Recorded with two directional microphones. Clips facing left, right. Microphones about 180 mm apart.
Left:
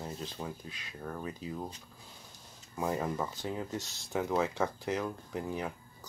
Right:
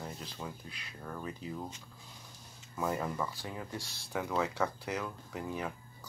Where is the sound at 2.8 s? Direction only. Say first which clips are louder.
Left 1 dB; 20° left (ahead or behind).